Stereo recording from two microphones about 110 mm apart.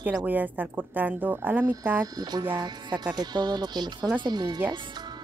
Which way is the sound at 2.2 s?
35° right (ahead or behind).